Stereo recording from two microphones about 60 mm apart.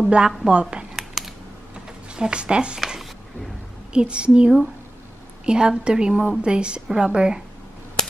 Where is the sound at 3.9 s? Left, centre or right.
Centre.